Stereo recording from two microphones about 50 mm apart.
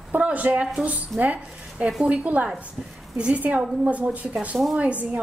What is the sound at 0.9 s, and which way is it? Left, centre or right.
A woman's voice, right.